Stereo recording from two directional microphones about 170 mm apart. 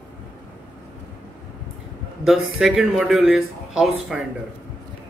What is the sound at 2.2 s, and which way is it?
A man's voice, centre (ahead or behind).